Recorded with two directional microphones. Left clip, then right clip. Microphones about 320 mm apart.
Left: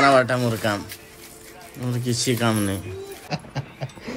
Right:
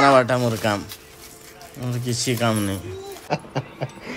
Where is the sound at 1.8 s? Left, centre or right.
Centre.